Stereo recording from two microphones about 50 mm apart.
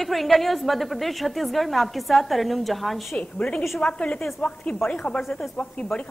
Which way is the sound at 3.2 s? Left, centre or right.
Left.